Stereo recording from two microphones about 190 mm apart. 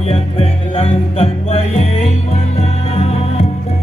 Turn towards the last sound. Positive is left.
turn(degrees=35)  # may be behind; listen again after turning